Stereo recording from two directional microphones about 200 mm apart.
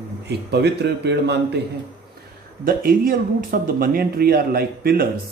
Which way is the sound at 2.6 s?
45° right (ahead or behind).